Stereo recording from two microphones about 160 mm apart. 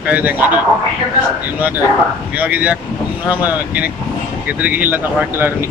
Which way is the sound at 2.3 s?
10° right (ahead or behind).